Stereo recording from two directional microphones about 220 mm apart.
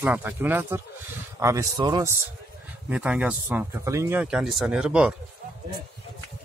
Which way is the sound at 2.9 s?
5° right (ahead or behind).